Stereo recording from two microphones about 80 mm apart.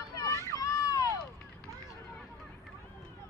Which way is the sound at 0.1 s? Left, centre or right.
Left.